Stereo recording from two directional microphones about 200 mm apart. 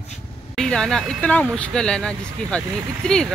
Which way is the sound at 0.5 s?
5° left (ahead or behind).